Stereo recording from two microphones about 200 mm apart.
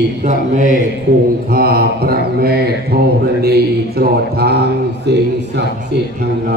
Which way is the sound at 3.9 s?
50° right (ahead or behind).